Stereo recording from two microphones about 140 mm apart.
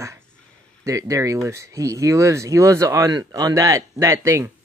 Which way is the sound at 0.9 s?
20° right (ahead or behind).